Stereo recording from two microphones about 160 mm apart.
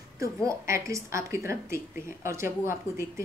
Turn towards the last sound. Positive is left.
turn(degrees=-15)  # may be behind; listen again after turning